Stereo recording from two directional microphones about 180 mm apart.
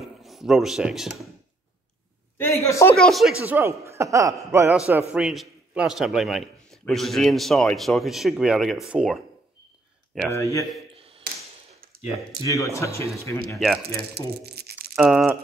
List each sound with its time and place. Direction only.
0.0 s speech: centre (ahead or behind)
2.3 s a man's voice: 15° left (ahead or behind)
3.0 s speech: centre (ahead or behind); by 4.7 s 15° right (ahead or behind)
4.7 s a man's voice: 5° right (ahead or behind)
10.3 s speech: 15° left (ahead or behind)
11.0 s tap: 30° right (ahead or behind)
12.4 s speech: 20° left (ahead or behind)
13.8 s speech: 65° right (ahead or behind)
15.0 s a man's voice: 5° right (ahead or behind)